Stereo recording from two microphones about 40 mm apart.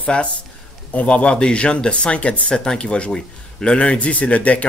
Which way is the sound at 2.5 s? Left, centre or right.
Centre.